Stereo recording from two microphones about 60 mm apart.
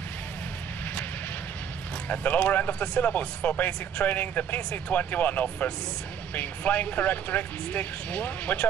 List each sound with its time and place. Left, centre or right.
2.0 s speech: left